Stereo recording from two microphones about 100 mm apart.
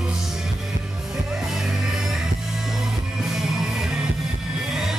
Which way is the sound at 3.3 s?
5° right (ahead or behind).